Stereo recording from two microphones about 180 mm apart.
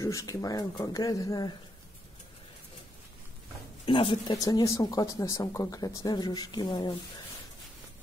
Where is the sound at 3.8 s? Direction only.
30° left (ahead or behind).